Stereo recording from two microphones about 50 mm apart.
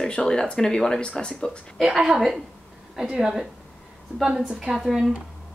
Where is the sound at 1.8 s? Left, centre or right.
Centre.